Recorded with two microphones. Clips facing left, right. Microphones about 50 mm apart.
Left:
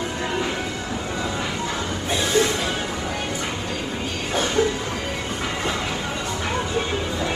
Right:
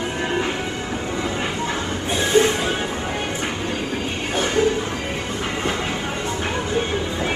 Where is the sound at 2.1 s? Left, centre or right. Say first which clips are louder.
Right 4 dB; right.